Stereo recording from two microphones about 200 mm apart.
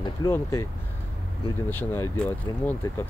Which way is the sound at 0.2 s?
15° left (ahead or behind).